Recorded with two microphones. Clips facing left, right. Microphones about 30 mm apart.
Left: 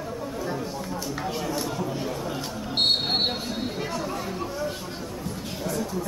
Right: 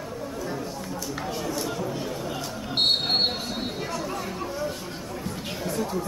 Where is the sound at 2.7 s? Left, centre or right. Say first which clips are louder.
Even; centre.